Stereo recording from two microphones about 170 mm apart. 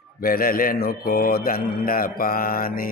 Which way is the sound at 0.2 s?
60° left (ahead or behind).